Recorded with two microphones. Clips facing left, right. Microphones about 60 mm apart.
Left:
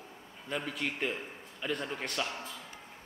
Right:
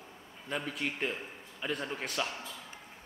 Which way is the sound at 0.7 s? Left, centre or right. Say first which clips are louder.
Even; centre.